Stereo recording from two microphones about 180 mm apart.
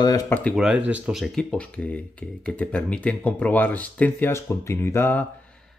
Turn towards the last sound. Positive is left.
turn(degrees=10)  # may be behind; listen again after turning